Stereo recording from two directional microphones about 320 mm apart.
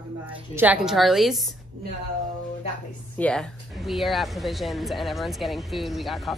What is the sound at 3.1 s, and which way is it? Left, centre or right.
Speech, centre.